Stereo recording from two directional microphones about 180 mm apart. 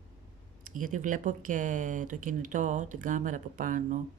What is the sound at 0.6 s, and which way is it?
Speech, 45° right (ahead or behind).